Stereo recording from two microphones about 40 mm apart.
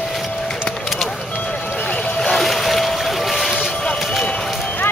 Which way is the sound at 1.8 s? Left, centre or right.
Left.